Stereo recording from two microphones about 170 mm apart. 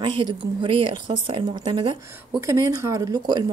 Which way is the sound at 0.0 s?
30° right (ahead or behind).